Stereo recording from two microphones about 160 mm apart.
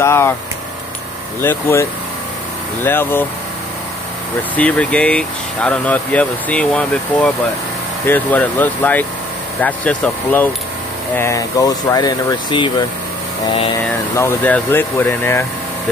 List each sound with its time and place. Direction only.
0.0 s speech: 15° left (ahead or behind)
1.4 s speech: 15° left (ahead or behind)
4.6 s speech: 10° left (ahead or behind); by 12.8 s 30° left (ahead or behind)
14.1 s speech: 10° left (ahead or behind)